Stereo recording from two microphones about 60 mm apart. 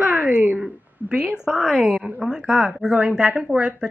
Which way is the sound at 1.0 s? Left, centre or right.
Centre.